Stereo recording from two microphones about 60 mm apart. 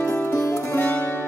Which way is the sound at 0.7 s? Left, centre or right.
Left.